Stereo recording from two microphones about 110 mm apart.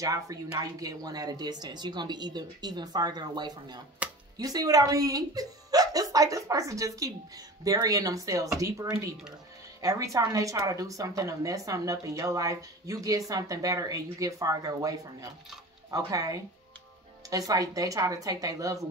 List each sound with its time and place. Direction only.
0.0 s speech: 30° right (ahead or behind)